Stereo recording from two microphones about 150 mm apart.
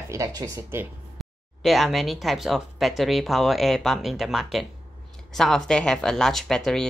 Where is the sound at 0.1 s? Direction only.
20° right (ahead or behind).